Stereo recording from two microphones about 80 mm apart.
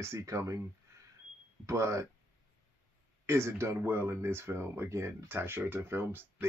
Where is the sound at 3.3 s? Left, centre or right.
Right.